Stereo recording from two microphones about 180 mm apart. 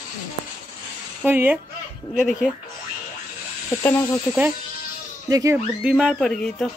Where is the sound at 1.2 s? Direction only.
10° right (ahead or behind).